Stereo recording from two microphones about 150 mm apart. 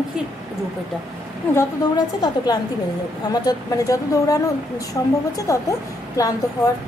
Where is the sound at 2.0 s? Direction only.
25° left (ahead or behind).